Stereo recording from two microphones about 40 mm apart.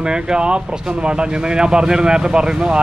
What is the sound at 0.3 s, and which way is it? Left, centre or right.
Speech, right.